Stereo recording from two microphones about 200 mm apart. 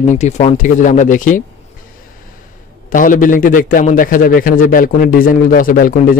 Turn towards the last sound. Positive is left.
turn(degrees=45)  # may be behind; listen again after turning